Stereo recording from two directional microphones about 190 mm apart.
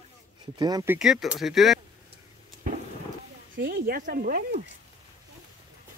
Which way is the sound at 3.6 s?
55° right (ahead or behind).